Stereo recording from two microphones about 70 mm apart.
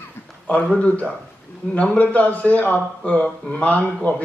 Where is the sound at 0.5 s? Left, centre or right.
Centre.